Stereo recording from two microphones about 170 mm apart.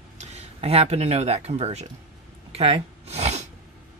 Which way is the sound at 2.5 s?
35° right (ahead or behind).